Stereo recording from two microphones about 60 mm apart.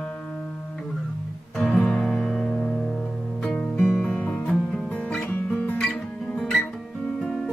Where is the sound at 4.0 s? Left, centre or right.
Left.